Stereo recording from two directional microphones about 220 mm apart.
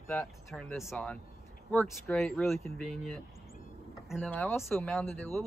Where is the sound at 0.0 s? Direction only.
10° left (ahead or behind).